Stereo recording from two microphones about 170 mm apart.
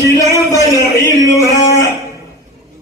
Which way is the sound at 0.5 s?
15° left (ahead or behind).